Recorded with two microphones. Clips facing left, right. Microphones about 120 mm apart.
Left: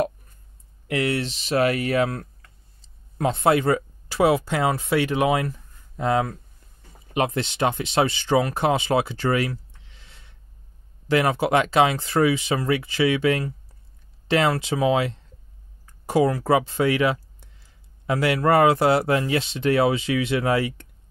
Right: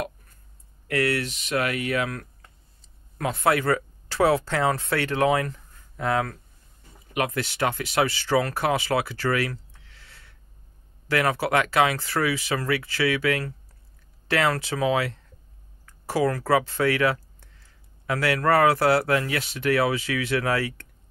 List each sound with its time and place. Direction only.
0.8 s speech: 20° left (ahead or behind)